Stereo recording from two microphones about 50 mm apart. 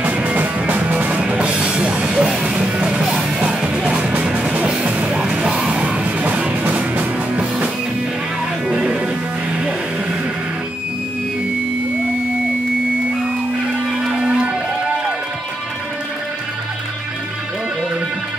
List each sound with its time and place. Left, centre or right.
0.1 s music: right; by 3.3 s centre
3.3 s music: right
14.2 s music: right